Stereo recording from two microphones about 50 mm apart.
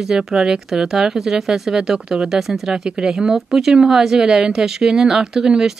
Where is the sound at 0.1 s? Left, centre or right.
Centre.